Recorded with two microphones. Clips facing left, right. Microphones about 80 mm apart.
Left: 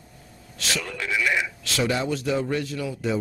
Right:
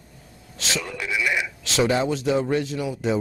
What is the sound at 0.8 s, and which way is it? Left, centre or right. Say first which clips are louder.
Speech: left 1 dB; centre.